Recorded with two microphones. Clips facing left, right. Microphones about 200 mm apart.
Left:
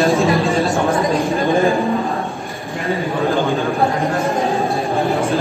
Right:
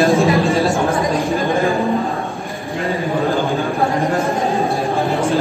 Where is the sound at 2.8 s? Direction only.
Centre (ahead or behind).